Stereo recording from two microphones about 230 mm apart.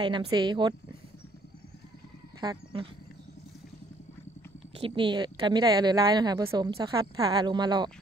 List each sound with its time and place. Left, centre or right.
0.0 s a woman's voice: right
2.4 s a woman's voice: centre
4.7 s a woman's voice: right